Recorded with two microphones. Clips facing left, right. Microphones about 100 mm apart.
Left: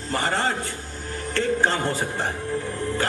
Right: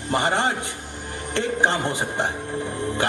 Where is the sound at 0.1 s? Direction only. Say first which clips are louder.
Right 2 dB; 20° right (ahead or behind).